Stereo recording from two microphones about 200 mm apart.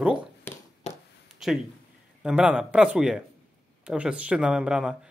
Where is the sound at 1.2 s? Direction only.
Centre (ahead or behind).